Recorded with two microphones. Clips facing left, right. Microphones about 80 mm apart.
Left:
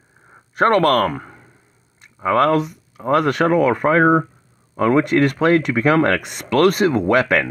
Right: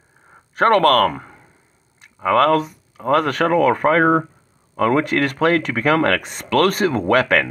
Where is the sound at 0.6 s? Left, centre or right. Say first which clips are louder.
Right 1 dB; right.